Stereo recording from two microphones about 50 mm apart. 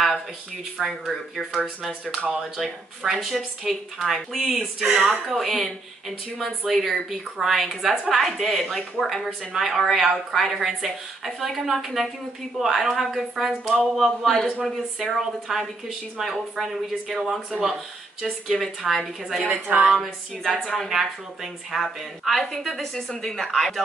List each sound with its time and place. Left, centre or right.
0.7 s speech: centre
1.8 s speech: centre
14.2 s a man's voice: centre
15.0 s a man's voice: centre